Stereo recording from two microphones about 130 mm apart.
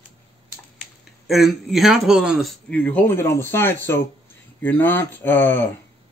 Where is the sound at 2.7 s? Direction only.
15° left (ahead or behind).